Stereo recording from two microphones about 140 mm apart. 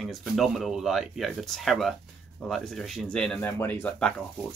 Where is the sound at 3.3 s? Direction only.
15° left (ahead or behind).